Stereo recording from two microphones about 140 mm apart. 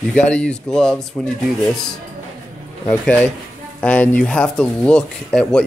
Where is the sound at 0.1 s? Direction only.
5° left (ahead or behind).